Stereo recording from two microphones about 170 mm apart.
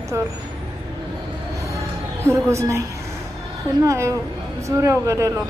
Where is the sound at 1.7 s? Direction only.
15° right (ahead or behind).